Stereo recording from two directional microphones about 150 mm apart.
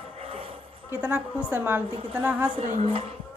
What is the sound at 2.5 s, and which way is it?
Speech, 50° right (ahead or behind).